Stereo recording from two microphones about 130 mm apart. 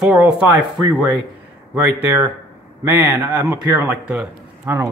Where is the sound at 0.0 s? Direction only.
10° right (ahead or behind).